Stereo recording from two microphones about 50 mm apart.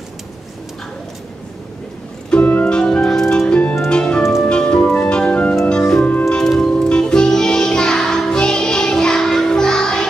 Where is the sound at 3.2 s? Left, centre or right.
Centre.